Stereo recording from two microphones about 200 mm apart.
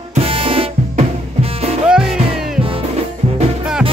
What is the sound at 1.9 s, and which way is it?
Music, centre (ahead or behind).